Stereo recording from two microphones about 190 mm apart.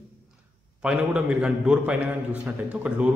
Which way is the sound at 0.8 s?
5° right (ahead or behind).